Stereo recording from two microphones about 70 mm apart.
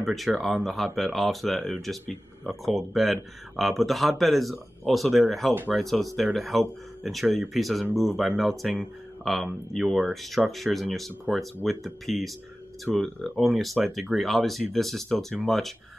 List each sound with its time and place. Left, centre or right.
0.0 s speech: centre